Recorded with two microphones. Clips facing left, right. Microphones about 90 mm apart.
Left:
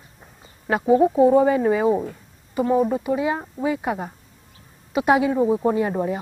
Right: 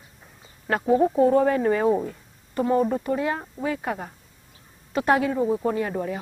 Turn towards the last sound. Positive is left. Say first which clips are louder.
# left 4 dB
turn(degrees=20)  # may be behind; listen again after turning